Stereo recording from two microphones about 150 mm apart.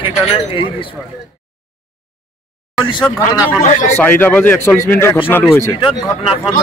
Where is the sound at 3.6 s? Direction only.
55° left (ahead or behind).